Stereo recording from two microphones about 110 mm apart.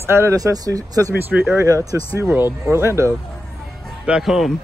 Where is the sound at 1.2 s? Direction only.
15° right (ahead or behind).